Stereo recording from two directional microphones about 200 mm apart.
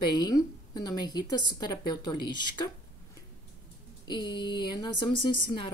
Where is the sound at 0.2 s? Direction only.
20° left (ahead or behind).